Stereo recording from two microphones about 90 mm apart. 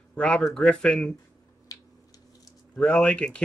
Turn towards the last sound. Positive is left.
turn(degrees=10)  # may be behind; listen again after turning